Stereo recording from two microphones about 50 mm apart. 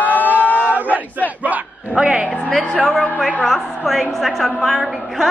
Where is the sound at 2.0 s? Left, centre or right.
Centre.